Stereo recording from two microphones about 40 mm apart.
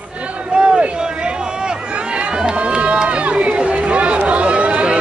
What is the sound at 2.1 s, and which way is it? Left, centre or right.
Run, right.